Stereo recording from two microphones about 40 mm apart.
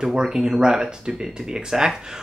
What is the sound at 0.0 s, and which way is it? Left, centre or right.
Speech, centre.